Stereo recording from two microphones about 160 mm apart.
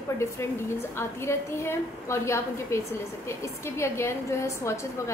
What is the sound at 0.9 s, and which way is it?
A woman's voice, 15° left (ahead or behind).